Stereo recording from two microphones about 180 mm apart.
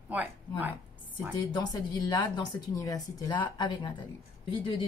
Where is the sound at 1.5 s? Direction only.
25° left (ahead or behind).